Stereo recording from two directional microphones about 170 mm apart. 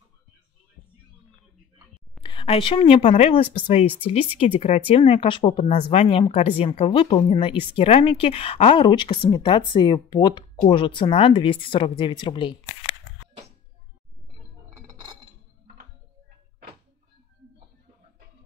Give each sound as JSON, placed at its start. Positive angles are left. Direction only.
{"t": 2.2, "sound": "a woman's voice", "side_deg": 30}
{"t": 14.9, "sound": "music", "side_deg": -20}